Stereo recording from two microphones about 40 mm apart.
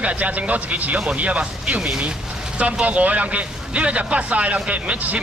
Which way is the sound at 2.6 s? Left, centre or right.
Right.